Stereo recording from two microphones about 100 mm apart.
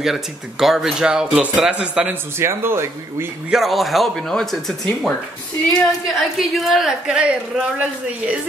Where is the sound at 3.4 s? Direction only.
5° right (ahead or behind).